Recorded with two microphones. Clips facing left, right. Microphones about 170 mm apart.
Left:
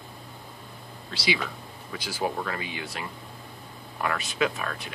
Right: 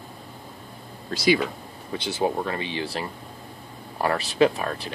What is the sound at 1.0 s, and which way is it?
Speech, 45° right (ahead or behind).